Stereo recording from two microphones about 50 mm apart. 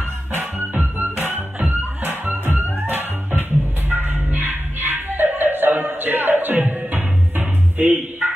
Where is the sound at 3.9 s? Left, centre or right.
Right.